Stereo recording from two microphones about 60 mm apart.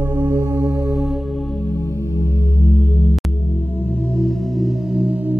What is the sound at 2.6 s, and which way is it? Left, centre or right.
Music, left.